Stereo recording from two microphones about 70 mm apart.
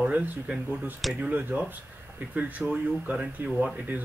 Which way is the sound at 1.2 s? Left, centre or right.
Right.